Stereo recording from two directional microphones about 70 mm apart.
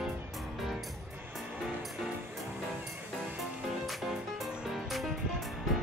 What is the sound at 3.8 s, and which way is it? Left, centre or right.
Music, centre.